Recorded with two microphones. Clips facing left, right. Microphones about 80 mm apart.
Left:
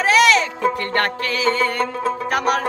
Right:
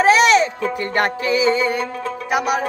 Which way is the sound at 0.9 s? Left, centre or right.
Centre.